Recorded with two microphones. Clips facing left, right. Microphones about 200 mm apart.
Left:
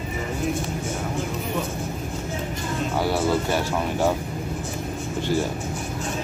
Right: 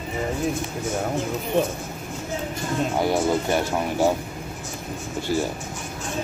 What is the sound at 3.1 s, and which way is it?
Speech, 15° right (ahead or behind).